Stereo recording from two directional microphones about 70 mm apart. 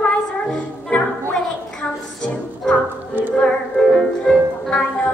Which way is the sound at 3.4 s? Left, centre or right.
Centre.